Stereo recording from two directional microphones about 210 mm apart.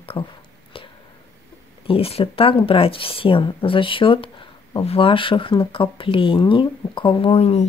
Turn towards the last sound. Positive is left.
turn(degrees=30)  # may be behind; listen again after turning